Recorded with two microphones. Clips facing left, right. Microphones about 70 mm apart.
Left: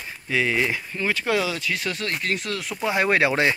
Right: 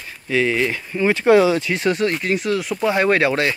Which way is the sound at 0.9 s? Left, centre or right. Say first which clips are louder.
Right 12 dB; right.